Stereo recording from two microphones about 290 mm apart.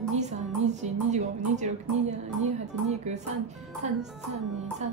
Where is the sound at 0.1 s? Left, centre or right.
Right.